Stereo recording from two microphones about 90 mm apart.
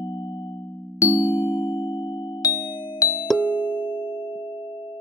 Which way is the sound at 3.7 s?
60° left (ahead or behind).